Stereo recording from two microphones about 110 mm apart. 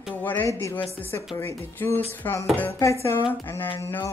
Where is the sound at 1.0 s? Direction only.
20° left (ahead or behind).